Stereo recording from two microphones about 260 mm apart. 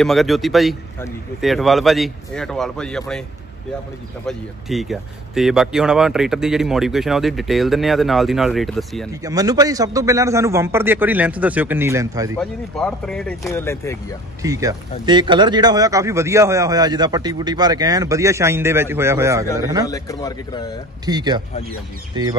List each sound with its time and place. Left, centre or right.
0.0 s speech: centre
4.3 s speech: centre
9.2 s speech: centre
12.4 s speech: centre
14.4 s speech: centre
19.9 s a man's voice: centre
21.0 s speech: centre